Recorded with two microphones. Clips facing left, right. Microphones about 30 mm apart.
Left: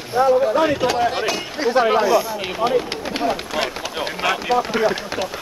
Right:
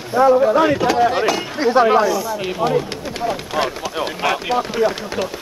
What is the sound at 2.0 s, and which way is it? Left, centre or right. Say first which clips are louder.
Speech: left 1 dB; centre.